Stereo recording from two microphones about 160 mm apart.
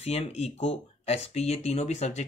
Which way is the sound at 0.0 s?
40° left (ahead or behind).